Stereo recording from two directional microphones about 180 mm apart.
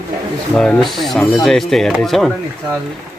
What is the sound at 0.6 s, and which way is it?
Speech, centre (ahead or behind).